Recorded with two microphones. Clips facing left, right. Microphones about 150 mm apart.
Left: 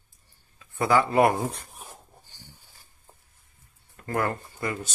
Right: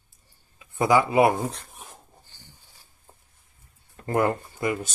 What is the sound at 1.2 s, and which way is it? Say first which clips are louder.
Speech: right 1 dB; centre (ahead or behind).